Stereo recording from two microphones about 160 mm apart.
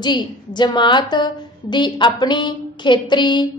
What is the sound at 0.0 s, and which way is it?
A woman's voice, 30° left (ahead or behind).